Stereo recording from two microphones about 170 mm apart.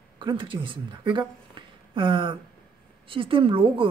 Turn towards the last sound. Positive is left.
turn(degrees=-30)  # may be behind; listen again after turning